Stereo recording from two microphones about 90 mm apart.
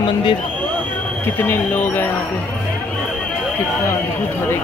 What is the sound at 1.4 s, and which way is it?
Speech, 25° left (ahead or behind).